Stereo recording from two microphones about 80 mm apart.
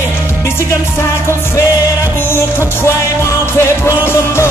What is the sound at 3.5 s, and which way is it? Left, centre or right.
Music, left.